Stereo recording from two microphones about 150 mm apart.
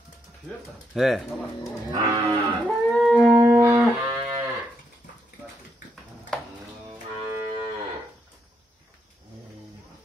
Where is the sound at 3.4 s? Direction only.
20° right (ahead or behind).